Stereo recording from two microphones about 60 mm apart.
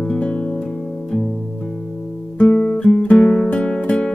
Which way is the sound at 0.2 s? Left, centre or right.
Centre.